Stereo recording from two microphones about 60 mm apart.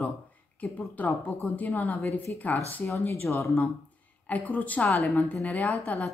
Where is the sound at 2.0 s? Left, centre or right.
Left.